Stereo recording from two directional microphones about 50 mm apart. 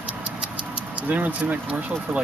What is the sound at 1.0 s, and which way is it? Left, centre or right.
Speech, right.